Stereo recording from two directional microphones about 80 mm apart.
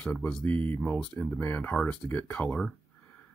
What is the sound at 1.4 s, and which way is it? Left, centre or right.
Speech, left.